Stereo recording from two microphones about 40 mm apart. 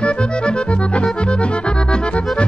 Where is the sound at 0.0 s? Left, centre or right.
Left.